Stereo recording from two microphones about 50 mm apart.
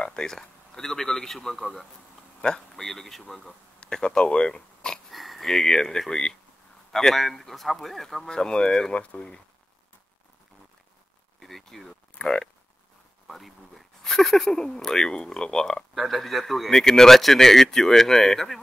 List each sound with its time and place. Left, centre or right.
0.0 s speech: centre
2.7 s speech: centre
3.8 s speech: centre
5.1 s speech: centre; by 9.4 s left
11.3 s a sound: centre
12.2 s speech: centre
13.3 s speech: centre
15.9 s speech: centre